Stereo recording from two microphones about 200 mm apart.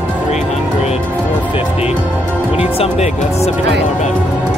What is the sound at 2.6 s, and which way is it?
Speech, 30° left (ahead or behind).